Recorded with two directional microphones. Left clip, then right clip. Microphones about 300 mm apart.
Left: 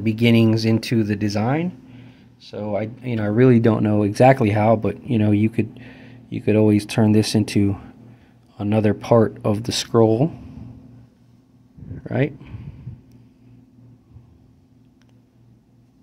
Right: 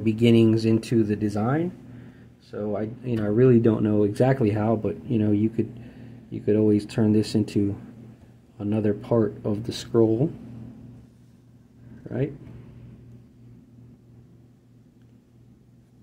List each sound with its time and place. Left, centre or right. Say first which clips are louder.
0.0 s speech: left 1 dB; left
2.5 s speech: left 4 dB; left